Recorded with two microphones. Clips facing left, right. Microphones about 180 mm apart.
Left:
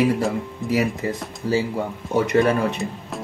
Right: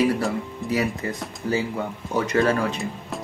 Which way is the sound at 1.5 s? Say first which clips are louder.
Left 3 dB; 30° left (ahead or behind).